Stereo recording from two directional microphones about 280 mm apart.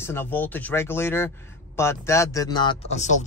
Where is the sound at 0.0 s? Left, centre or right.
Centre.